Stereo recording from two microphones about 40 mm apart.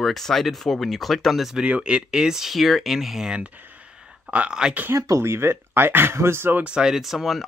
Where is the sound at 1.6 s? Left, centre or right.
Right; by 2.5 s centre.